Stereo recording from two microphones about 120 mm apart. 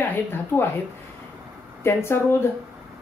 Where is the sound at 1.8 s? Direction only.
20° left (ahead or behind).